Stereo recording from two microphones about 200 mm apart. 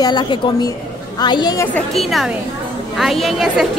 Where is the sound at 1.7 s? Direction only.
Centre (ahead or behind).